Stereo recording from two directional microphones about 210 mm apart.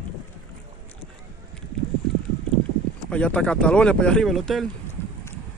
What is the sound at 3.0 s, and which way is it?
Speech, 5° left (ahead or behind).